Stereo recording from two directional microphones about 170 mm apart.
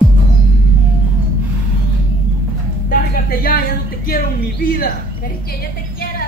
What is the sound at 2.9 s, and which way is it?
Speech, 60° left (ahead or behind).